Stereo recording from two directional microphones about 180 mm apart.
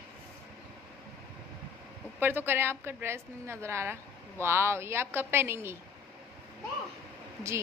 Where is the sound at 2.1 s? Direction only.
10° right (ahead or behind).